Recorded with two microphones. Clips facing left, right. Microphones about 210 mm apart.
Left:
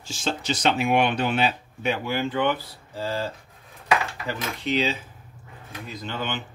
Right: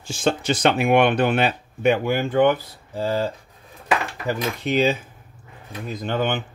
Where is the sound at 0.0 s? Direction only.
55° right (ahead or behind).